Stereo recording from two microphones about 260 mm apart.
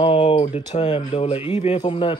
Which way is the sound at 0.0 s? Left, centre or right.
Left.